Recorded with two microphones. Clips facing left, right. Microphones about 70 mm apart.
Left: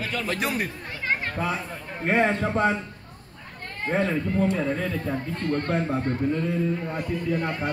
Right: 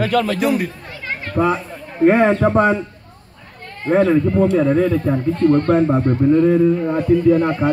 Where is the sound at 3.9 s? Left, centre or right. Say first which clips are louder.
Right 11 dB; right.